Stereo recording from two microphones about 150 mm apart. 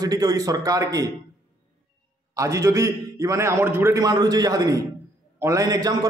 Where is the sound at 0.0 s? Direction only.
25° right (ahead or behind).